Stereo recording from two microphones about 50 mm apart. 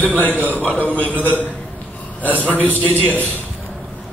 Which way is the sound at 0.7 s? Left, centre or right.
Left.